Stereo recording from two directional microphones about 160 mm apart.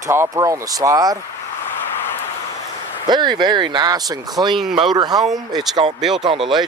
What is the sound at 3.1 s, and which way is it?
Speech, 30° right (ahead or behind).